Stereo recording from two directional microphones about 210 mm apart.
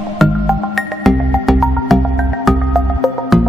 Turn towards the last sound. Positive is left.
turn(degrees=0)  # may be behind; listen again after turning